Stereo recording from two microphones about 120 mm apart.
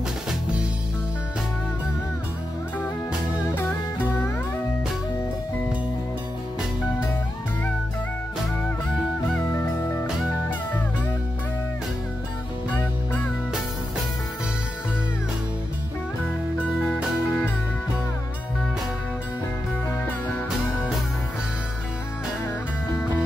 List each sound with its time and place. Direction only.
9.5 s music: 20° left (ahead or behind)
16.8 s music: 10° left (ahead or behind)